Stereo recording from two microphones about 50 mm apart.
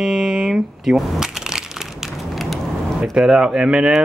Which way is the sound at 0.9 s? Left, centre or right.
Centre.